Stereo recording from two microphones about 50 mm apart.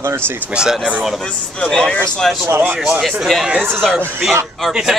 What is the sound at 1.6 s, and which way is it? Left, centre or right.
Speech, centre.